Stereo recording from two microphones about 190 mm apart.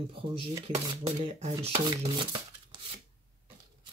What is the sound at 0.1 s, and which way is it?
Speech, 25° right (ahead or behind).